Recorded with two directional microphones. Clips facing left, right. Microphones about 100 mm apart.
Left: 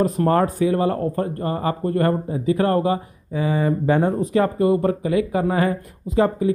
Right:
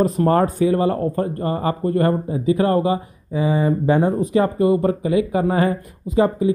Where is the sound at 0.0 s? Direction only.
25° right (ahead or behind).